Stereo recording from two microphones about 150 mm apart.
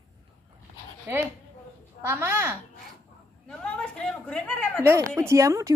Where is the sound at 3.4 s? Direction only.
5° left (ahead or behind).